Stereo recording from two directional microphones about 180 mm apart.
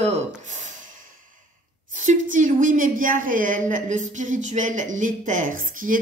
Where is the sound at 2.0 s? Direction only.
45° right (ahead or behind).